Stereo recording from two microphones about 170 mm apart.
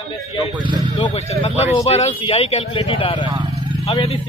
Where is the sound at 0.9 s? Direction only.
40° left (ahead or behind).